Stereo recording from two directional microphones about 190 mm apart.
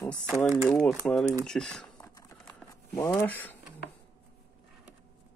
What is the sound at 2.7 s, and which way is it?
Speech, 15° left (ahead or behind).